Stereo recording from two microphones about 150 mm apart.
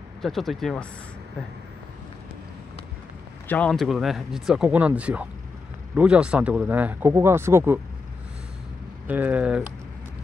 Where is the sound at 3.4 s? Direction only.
10° left (ahead or behind); by 7.8 s 15° right (ahead or behind).